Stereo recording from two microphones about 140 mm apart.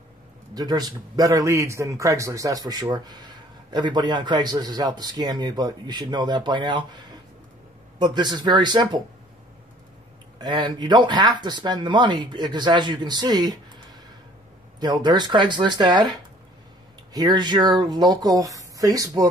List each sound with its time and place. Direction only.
0.6 s a man's voice: 30° right (ahead or behind)
10.4 s speech: 30° right (ahead or behind)
14.8 s a man's voice: 30° right (ahead or behind)